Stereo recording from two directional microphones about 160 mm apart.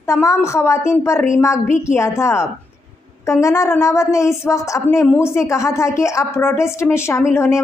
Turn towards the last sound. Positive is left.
turn(degrees=15)  # may be behind; listen again after turning